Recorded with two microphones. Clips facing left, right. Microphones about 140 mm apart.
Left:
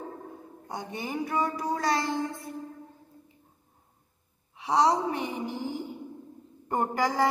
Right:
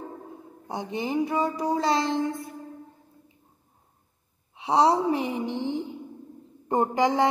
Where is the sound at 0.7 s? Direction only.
25° right (ahead or behind).